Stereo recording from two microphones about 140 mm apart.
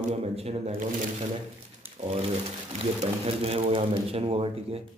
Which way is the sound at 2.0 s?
50° right (ahead or behind).